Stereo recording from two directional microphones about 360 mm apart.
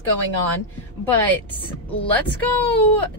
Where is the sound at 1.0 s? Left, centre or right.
Centre.